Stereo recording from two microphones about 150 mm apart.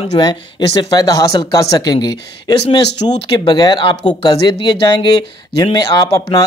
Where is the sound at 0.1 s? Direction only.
30° left (ahead or behind).